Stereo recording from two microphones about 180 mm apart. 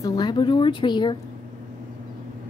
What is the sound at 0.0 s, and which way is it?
A woman's voice, 20° left (ahead or behind).